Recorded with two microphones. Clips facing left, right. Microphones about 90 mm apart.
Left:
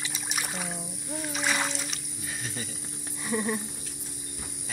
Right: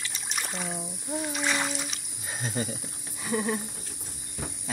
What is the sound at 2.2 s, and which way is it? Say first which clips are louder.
Speech: right 6 dB; 30° right (ahead or behind).